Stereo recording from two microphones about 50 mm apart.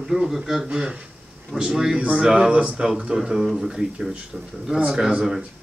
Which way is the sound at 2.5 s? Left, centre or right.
Right.